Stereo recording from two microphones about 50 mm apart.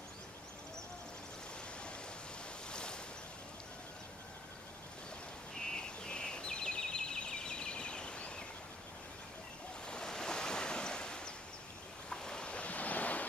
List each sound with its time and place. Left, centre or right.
2.7 s waves: centre
5.7 s bird: centre
9.8 s waves: centre; by 13.3 s left